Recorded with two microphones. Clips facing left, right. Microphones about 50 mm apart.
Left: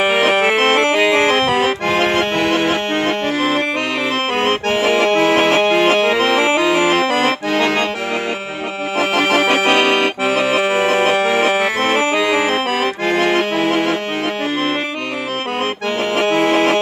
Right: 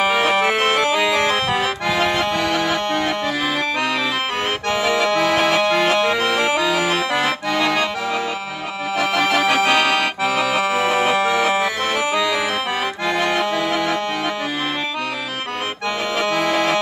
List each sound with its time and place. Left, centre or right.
0.0 s music: left
1.2 s accordion: left
6.7 s accordion: left
8.9 s music: left
9.6 s accordion: left
16.2 s music: left